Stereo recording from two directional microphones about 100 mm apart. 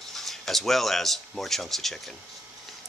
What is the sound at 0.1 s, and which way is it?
Speech, centre (ahead or behind).